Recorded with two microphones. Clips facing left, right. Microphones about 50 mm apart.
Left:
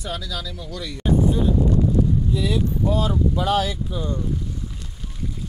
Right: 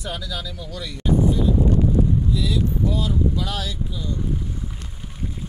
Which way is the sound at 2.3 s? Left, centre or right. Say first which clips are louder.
Left 1 dB; left.